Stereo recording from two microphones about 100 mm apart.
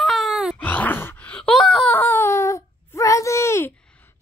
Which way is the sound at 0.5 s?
15° left (ahead or behind).